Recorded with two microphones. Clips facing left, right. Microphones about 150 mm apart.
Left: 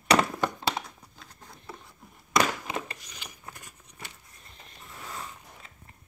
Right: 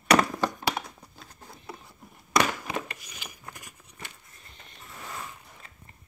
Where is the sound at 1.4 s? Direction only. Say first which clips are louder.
Right 2 dB; 5° right (ahead or behind).